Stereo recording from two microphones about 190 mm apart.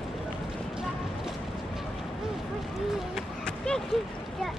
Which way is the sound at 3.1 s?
5° left (ahead or behind).